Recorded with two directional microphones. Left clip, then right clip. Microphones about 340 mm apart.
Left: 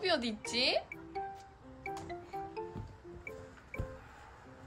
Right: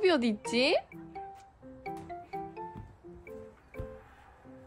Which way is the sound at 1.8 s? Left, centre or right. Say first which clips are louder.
Right 1 dB; centre.